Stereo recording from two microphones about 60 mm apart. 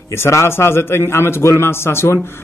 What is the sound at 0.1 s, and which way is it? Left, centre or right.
A man's voice, left.